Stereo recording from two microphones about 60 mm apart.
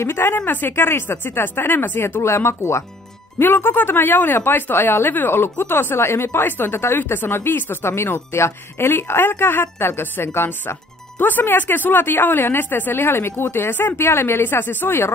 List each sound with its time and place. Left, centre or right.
0.0 s a woman's voice: left
3.3 s a woman's voice: left